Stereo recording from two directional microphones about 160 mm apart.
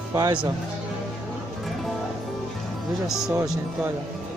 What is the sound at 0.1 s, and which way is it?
Speech, 25° right (ahead or behind).